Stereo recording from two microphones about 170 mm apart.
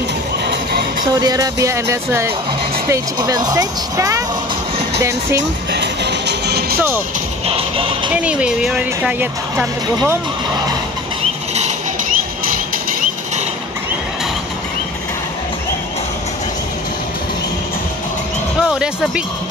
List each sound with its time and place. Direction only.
1.2 s speech: 20° right (ahead or behind)
5.7 s music: 90° right; by 6.8 s 75° right (ahead or behind)
7.4 s music: 35° right (ahead or behind)
8.2 s speech: 5° right (ahead or behind)
18.6 s speech: 5° right (ahead or behind)